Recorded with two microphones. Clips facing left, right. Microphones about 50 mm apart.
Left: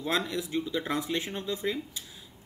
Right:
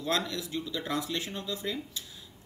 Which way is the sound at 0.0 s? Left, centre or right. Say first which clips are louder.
Left 1 dB; centre.